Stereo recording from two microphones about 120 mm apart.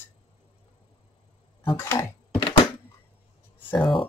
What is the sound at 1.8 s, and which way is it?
Speech, 20° left (ahead or behind).